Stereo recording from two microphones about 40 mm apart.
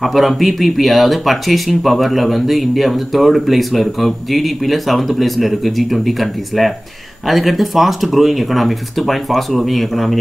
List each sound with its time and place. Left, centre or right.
0.0 s speech: centre